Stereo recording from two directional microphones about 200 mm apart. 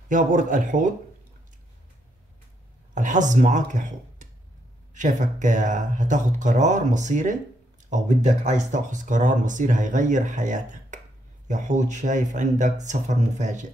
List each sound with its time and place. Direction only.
0.1 s speech: 40° right (ahead or behind)
2.9 s speech: 40° right (ahead or behind)